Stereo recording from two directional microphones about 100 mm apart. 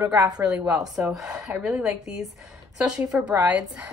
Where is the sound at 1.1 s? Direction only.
5° right (ahead or behind).